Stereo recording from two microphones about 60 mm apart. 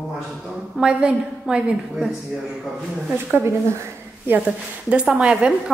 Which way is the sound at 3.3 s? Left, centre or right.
Right.